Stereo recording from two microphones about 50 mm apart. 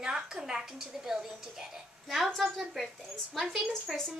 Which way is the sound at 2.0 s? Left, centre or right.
Centre.